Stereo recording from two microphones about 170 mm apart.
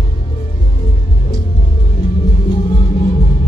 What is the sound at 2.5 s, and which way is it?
Music, 30° left (ahead or behind).